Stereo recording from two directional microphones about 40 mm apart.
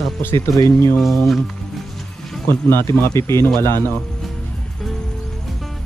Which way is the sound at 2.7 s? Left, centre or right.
Left.